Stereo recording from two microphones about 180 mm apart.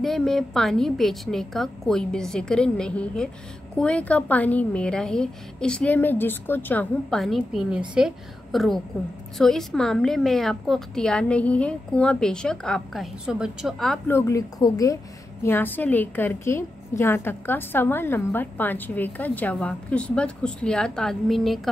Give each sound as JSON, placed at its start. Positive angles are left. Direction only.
{"t": 0.0, "sound": "a woman's voice", "side_deg": 0}
{"t": 14.0, "sound": "a woman's voice", "side_deg": 15}